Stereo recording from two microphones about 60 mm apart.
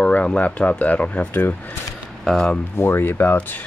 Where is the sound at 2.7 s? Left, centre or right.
Left.